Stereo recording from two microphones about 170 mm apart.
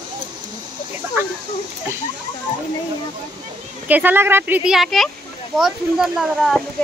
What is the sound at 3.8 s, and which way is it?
A woman's voice, 10° right (ahead or behind).